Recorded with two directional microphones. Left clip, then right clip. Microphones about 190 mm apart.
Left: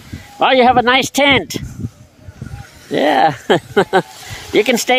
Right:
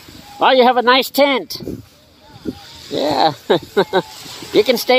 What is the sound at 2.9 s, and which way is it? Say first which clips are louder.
Speech: left 3 dB; 30° left (ahead or behind).